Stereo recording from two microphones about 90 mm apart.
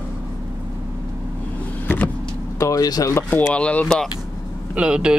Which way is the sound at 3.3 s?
15° left (ahead or behind).